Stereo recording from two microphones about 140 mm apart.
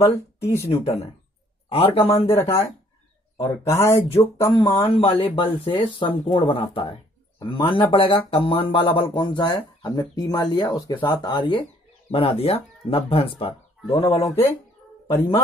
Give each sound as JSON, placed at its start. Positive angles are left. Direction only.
{"t": 0.0, "sound": "speech", "side_deg": 20}
{"t": 0.7, "sound": "a man's voice", "side_deg": 45}
{"t": 2.3, "sound": "speech", "side_deg": 20}
{"t": 4.4, "sound": "speech", "side_deg": 30}